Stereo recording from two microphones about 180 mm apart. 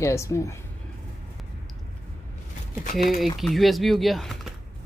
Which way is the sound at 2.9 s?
Centre (ahead or behind).